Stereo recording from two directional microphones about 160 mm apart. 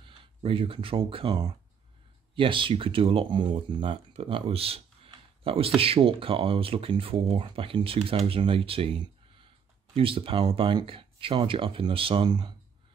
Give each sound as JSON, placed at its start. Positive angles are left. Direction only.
{"t": 0.0, "sound": "speech", "side_deg": -35}